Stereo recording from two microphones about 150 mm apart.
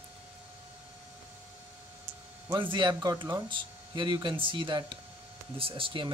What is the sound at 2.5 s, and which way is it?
Speech, 30° right (ahead or behind).